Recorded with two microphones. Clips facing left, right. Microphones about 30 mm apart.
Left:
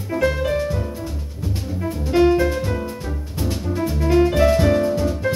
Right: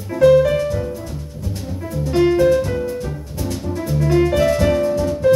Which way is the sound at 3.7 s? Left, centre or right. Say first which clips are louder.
Even; centre.